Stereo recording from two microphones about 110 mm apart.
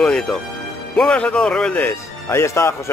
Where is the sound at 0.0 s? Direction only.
5° left (ahead or behind).